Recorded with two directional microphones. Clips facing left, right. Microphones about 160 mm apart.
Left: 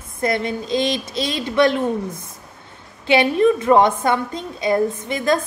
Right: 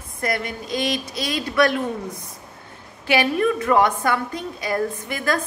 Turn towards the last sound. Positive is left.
turn(degrees=25)  # may be behind; listen again after turning